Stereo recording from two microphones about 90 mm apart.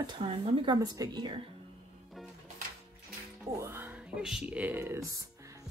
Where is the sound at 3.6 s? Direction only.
25° right (ahead or behind).